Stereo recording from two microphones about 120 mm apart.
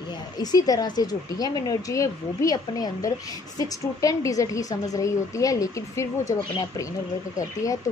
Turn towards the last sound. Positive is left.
turn(degrees=30)  # may be behind; listen again after turning